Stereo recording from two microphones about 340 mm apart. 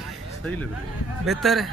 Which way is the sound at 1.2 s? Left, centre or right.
Centre.